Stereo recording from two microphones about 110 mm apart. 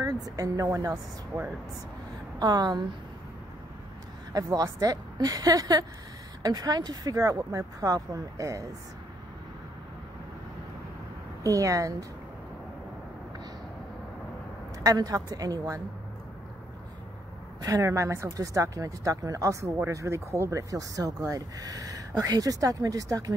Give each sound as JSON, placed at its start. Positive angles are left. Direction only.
{"t": 0.0, "sound": "speech", "side_deg": -30}
{"t": 4.3, "sound": "speech", "side_deg": -35}
{"t": 11.4, "sound": "speech", "side_deg": -30}
{"t": 14.8, "sound": "speech", "side_deg": -35}
{"t": 17.6, "sound": "speech", "side_deg": -35}